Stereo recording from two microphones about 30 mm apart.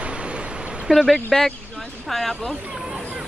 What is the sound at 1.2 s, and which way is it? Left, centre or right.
Speech, centre.